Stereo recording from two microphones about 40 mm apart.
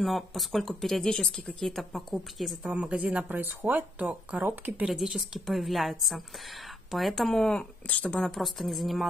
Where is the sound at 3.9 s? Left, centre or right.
Right.